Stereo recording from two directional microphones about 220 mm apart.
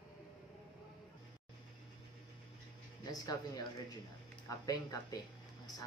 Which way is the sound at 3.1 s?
15° left (ahead or behind).